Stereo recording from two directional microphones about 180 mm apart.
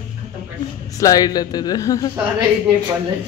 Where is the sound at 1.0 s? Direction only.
20° left (ahead or behind).